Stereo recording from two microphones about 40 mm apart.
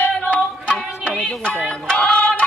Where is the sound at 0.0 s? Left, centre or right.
Left.